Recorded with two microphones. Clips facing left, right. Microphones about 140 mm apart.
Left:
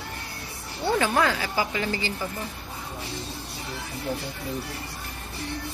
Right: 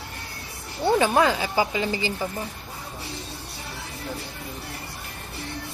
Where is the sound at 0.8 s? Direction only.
20° right (ahead or behind).